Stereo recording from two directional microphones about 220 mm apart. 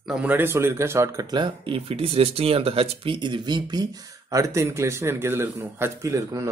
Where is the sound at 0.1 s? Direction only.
5° right (ahead or behind).